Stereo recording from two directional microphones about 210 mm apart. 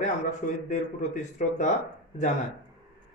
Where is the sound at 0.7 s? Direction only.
35° left (ahead or behind).